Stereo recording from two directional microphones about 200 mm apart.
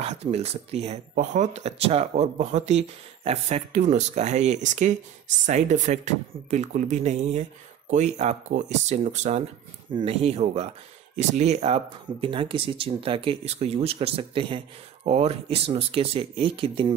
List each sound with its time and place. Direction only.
0.0 s speech: 30° right (ahead or behind)